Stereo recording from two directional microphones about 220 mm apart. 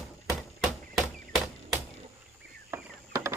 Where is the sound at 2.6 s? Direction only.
15° right (ahead or behind).